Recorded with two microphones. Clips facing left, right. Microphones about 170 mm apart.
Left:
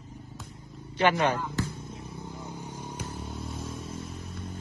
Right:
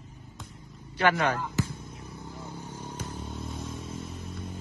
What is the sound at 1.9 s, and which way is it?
Vehicle, 25° left (ahead or behind).